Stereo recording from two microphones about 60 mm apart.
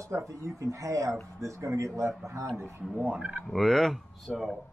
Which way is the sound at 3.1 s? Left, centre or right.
Right.